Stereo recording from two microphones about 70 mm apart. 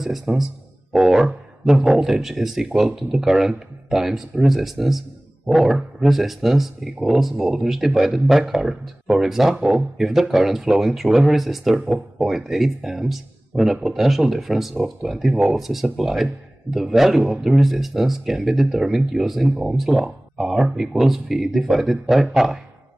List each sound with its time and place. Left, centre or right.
0.0 s speech: centre